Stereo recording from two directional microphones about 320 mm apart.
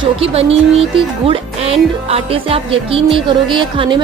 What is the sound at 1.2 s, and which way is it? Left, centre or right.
Music, centre.